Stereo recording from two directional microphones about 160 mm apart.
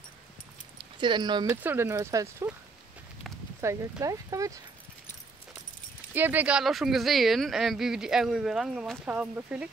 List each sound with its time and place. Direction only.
1.0 s speech: 30° right (ahead or behind)
1.5 s speech: 10° right (ahead or behind)
3.6 s speech: 20° right (ahead or behind)
6.1 s speech: 10° right (ahead or behind)